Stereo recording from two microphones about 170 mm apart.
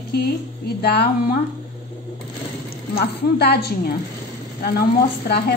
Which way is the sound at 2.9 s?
75° left (ahead or behind).